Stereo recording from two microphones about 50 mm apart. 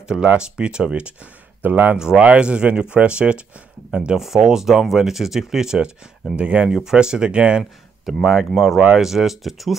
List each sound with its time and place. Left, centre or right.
0.1 s speech: centre
1.6 s speech: right
2.0 s speech: centre
6.7 s speech: centre
8.1 s speech: centre